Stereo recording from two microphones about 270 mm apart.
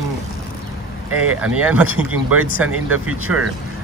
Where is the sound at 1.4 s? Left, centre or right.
Centre.